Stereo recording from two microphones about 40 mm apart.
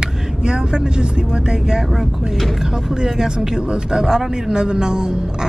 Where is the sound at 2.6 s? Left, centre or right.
Centre.